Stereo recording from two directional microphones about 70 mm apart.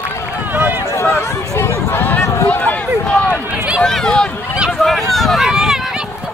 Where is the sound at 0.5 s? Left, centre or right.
Right.